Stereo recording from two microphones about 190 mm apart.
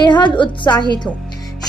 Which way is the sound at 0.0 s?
25° left (ahead or behind).